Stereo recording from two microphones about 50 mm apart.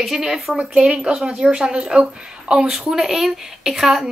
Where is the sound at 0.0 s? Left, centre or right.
Centre.